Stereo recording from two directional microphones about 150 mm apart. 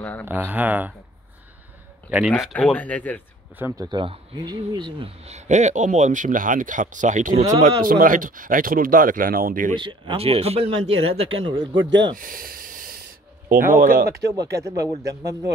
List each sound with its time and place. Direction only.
0.2 s speech: 10° right (ahead or behind)
2.0 s speech: 10° right (ahead or behind)
2.5 s speech: 10° left (ahead or behind)
3.5 s speech: 20° right (ahead or behind); by 7.4 s 55° right (ahead or behind)
7.6 s speech: 65° right (ahead or behind)
9.8 s a man's voice: 35° right (ahead or behind)
12.2 s hiss: 70° right (ahead or behind)
13.5 s speech: 65° right (ahead or behind); by 14.3 s 90° right
14.6 s speech: 20° right (ahead or behind)